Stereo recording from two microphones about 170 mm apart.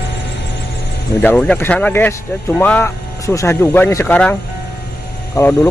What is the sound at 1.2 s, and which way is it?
Speech, 5° left (ahead or behind).